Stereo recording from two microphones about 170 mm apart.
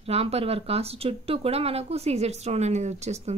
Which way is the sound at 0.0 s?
35° right (ahead or behind).